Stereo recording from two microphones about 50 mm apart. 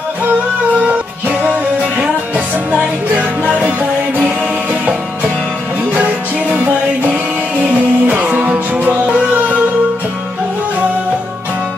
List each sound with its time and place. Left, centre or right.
1.4 s music: right
6.5 s music: right